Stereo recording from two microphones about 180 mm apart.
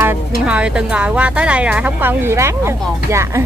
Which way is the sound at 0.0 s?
10° right (ahead or behind).